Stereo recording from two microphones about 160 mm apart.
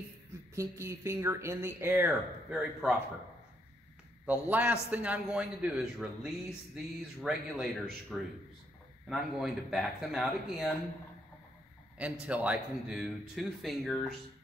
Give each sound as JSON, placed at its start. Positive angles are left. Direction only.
{"t": 0.6, "sound": "speech", "side_deg": -15}
{"t": 4.3, "sound": "speech", "side_deg": -10}
{"t": 12.0, "sound": "speech", "side_deg": -10}